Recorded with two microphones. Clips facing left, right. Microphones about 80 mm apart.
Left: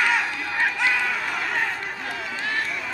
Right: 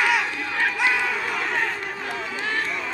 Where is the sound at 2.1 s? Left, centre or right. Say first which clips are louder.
Right 1 dB; right.